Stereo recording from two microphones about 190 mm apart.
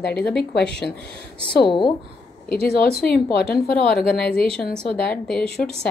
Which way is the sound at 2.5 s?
55° left (ahead or behind).